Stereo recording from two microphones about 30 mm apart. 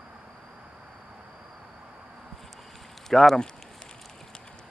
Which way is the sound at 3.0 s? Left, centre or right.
Centre.